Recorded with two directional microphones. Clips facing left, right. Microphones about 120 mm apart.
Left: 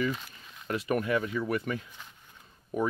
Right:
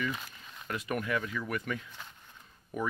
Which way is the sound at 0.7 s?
30° left (ahead or behind).